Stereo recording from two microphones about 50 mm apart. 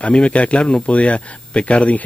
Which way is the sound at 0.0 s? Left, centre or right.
Left.